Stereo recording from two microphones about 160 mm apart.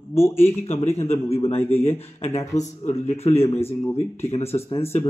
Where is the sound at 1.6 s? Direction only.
15° left (ahead or behind).